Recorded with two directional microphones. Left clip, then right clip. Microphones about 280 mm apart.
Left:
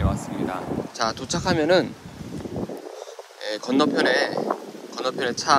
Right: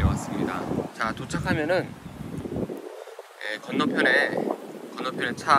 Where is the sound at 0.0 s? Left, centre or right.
Centre.